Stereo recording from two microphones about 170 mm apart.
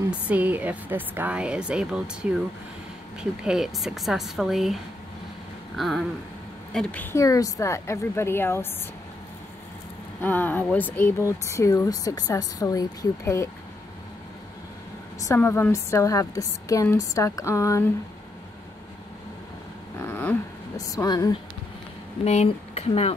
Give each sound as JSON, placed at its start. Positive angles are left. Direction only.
{"t": 0.3, "sound": "speech", "side_deg": -10}
{"t": 3.4, "sound": "a woman's voice", "side_deg": 0}
{"t": 5.8, "sound": "a woman's voice", "side_deg": 0}
{"t": 10.2, "sound": "speech", "side_deg": 10}
{"t": 15.1, "sound": "speech", "side_deg": 15}
{"t": 20.0, "sound": "a sound", "side_deg": 10}
{"t": 20.7, "sound": "a woman's voice", "side_deg": 20}
{"t": 22.2, "sound": "speech", "side_deg": 40}